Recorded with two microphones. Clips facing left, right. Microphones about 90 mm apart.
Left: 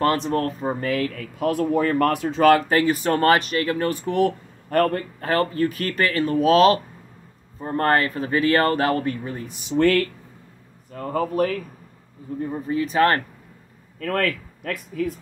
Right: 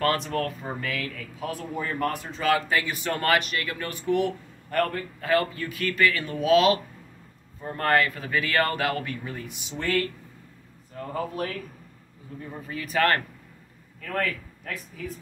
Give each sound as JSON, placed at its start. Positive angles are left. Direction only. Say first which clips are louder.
{"t": 0.0, "sound": "speech", "louder": "left 4 dB", "side_deg": 30}
{"t": 2.7, "sound": "speech", "louder": "left 7 dB", "side_deg": 40}
{"t": 11.0, "sound": "speech", "louder": "left 8 dB", "side_deg": 45}
{"t": 12.4, "sound": "speech", "louder": "left 11 dB", "side_deg": 35}
{"t": 13.9, "sound": "speech", "louder": "left 5 dB", "side_deg": 65}